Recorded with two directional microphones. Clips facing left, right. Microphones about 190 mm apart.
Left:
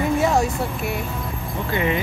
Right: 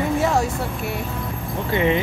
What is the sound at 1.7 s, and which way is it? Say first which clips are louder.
Speech: right 3 dB; 25° right (ahead or behind).